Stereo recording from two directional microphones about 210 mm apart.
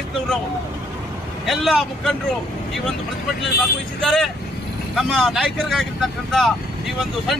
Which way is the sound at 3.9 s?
Centre (ahead or behind).